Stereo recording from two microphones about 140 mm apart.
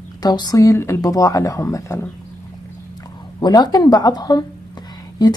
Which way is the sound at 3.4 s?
30° left (ahead or behind).